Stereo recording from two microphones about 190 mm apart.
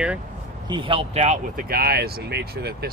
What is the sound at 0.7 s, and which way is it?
Speech, 25° right (ahead or behind).